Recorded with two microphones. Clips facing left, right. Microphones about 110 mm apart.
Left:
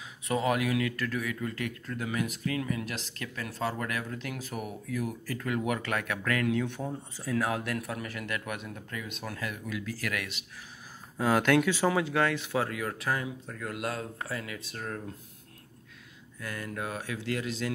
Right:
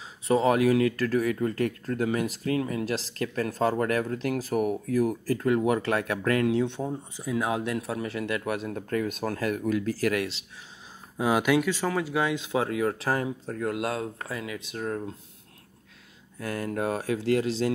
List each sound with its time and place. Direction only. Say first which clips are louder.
0.3 s speech: right 7 dB; 30° right (ahead or behind)
6.8 s speech: right 4 dB; 15° right (ahead or behind); by 10.4 s 30° right (ahead or behind)
11.1 s speech: right 1 dB; 15° right (ahead or behind)
16.3 s speech: right 7 dB; 35° right (ahead or behind)